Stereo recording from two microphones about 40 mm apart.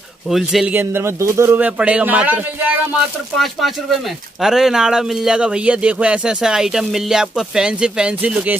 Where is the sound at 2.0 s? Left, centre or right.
Right.